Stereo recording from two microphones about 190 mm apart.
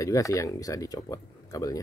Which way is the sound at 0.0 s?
15° left (ahead or behind).